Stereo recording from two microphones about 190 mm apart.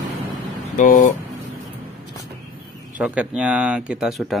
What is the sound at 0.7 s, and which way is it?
Speech, 40° left (ahead or behind).